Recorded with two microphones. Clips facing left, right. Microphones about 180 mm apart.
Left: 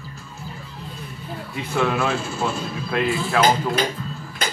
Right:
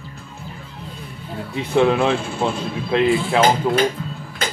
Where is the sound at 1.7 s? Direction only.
30° right (ahead or behind).